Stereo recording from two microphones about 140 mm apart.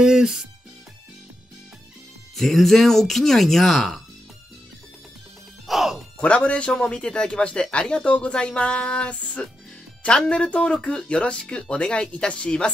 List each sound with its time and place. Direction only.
0.0 s speech: 5° right (ahead or behind)
2.3 s speech: centre (ahead or behind)
5.7 s speech: centre (ahead or behind)